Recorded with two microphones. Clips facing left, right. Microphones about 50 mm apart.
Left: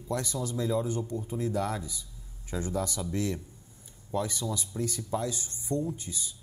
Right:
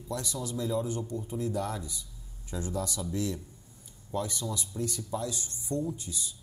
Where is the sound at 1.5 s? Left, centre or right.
Left.